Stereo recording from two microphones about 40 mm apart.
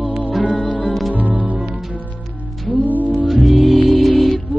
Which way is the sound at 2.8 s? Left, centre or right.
Right.